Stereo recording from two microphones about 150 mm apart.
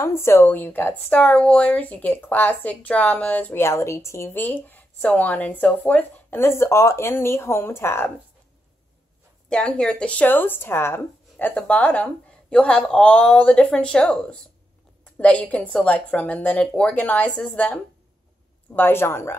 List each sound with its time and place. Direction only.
0.0 s a woman's voice: 15° left (ahead or behind)
9.5 s a woman's voice: 5° left (ahead or behind)